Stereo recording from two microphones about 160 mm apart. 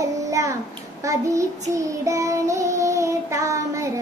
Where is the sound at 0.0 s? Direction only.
20° right (ahead or behind).